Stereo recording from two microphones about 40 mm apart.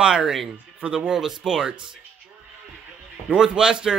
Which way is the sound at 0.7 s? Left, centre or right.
Right.